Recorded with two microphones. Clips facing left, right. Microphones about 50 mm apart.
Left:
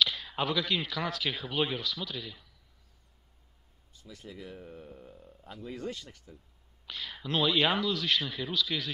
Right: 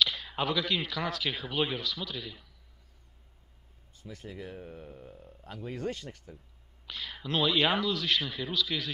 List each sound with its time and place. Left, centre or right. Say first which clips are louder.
0.0 s a sound: even; centre
0.4 s speech: even; centre
3.9 s speech: right 3 dB; right
5.4 s speech: right 3 dB; right
6.9 s speech: even; centre